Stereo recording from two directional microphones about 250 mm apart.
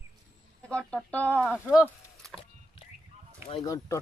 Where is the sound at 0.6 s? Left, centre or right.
Centre.